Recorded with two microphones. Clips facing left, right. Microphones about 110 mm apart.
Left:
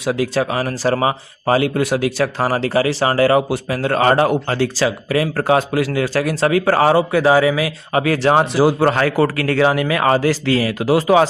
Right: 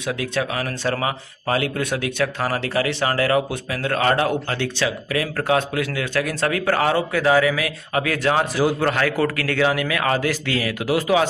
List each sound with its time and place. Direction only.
0.2 s a man's voice: 35° left (ahead or behind)